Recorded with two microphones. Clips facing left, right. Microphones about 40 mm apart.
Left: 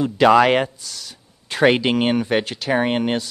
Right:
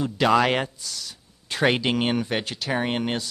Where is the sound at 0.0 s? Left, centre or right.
Left.